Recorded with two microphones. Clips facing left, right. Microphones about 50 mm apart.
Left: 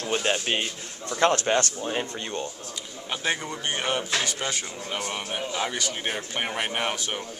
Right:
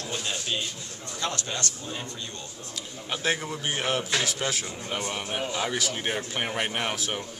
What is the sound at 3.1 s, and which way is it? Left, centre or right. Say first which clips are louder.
A man's voice: even; centre.